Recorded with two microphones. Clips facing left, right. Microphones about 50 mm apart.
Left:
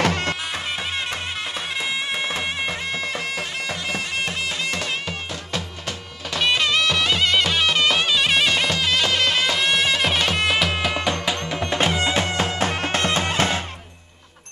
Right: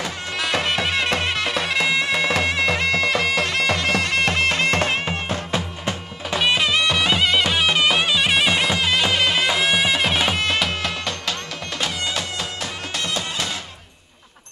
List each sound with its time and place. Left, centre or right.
0.0 s bagpipes: left
0.4 s bagpipes: right
5.5 s music: right
6.4 s music: centre
11.7 s music: left